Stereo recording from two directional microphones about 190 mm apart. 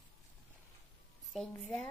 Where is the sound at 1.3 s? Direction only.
5° left (ahead or behind).